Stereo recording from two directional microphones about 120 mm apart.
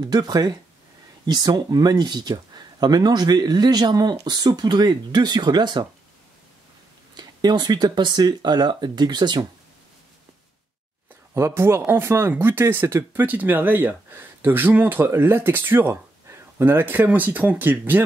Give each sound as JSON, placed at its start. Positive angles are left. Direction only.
{"t": 0.0, "sound": "speech", "side_deg": -35}
{"t": 7.2, "sound": "speech", "side_deg": -35}
{"t": 11.3, "sound": "speech", "side_deg": -20}